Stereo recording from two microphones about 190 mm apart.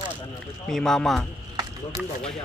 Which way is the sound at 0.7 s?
5° left (ahead or behind).